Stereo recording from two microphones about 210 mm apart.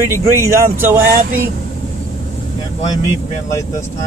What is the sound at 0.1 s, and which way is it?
Speech, 15° right (ahead or behind).